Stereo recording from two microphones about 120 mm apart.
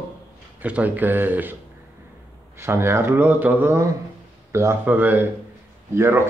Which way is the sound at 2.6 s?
20° right (ahead or behind).